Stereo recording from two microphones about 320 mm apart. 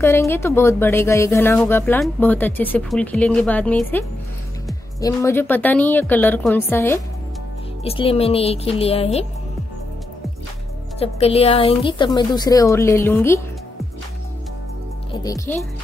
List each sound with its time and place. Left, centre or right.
0.0 s speech: centre
5.0 s speech: centre
7.8 s speech: centre
11.0 s speech: centre
15.1 s speech: centre